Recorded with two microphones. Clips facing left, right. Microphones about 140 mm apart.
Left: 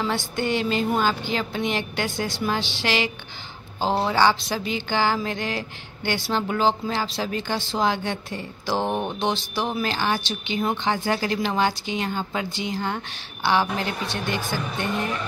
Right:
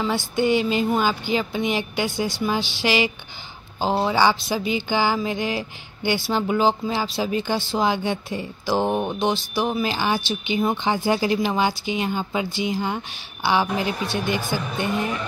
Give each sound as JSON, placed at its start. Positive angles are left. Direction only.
{"t": 0.4, "sound": "speech", "side_deg": -5}